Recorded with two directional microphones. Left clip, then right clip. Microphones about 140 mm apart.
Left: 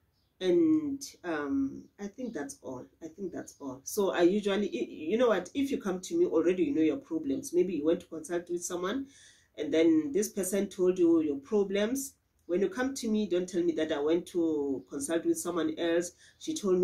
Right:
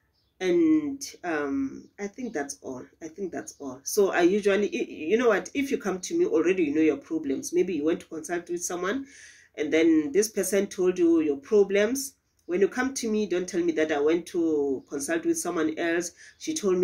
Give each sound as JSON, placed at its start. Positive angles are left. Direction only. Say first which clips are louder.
{"t": 0.4, "sound": "speech", "louder": "right 3 dB", "side_deg": 20}